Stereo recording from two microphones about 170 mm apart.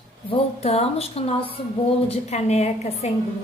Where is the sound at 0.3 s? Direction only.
40° left (ahead or behind).